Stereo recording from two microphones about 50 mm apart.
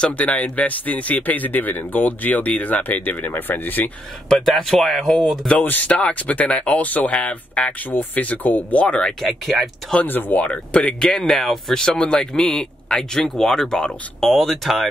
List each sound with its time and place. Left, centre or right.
0.0 s speech: left
4.6 s speech: centre
5.6 s speech: left
7.1 s speech: left
7.9 s speech: left
8.8 s speech: centre
10.0 s speech: left
10.4 s speech: left
11.1 s speech: centre
11.8 s speech: centre
14.2 s speech: centre